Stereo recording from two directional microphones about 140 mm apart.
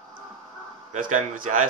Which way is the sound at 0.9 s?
60° right (ahead or behind).